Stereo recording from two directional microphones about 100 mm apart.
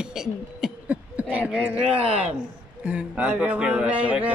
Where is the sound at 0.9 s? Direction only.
15° right (ahead or behind).